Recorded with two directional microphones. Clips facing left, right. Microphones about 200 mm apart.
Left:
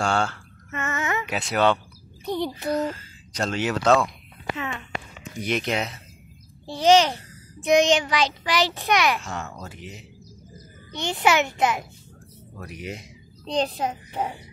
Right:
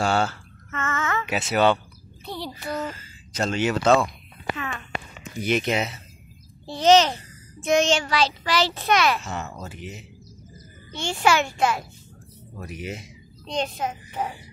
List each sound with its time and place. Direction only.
0.0 s speech: 5° right (ahead or behind)
0.7 s a sound: 15° left (ahead or behind)
1.2 s speech: 5° right (ahead or behind)
2.2 s speech: 20° left (ahead or behind)
2.7 s speech: centre (ahead or behind)
4.6 s a child's voice: 20° left (ahead or behind)
5.2 s speech: centre (ahead or behind)
6.8 s a child's voice: 10° left (ahead or behind)
9.2 s speech: centre (ahead or behind)
10.9 s a child's voice: 20° left (ahead or behind)
12.5 s speech: centre (ahead or behind)
13.5 s a child's voice: 35° left (ahead or behind)